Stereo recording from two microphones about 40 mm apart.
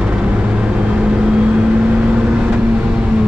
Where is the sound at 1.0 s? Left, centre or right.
Right.